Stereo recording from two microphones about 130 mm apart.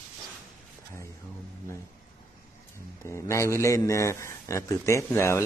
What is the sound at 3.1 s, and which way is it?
A man's voice, 20° left (ahead or behind).